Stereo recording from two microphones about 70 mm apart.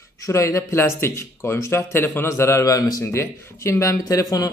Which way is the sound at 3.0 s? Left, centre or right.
Left.